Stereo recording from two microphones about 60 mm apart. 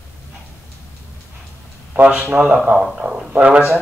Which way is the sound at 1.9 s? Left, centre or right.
Right.